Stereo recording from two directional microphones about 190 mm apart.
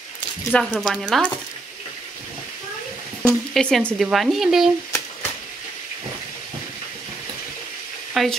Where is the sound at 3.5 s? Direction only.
5° left (ahead or behind).